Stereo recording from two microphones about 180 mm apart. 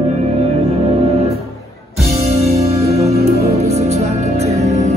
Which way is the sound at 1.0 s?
35° right (ahead or behind).